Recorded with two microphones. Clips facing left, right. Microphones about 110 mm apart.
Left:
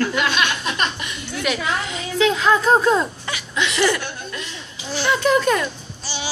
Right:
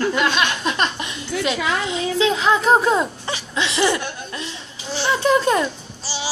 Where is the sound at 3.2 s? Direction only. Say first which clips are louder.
Even; 30° right (ahead or behind).